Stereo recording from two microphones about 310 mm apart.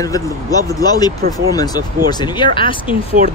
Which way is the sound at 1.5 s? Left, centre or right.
Centre.